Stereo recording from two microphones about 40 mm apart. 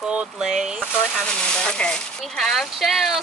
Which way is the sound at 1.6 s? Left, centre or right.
Left.